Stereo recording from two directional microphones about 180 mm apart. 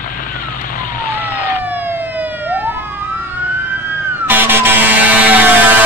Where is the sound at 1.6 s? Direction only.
10° right (ahead or behind).